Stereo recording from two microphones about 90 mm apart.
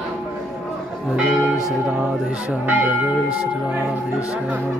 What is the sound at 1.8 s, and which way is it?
Church bell, 10° right (ahead or behind).